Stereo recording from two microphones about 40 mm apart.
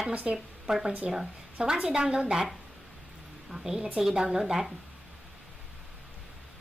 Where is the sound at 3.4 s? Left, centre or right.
Centre.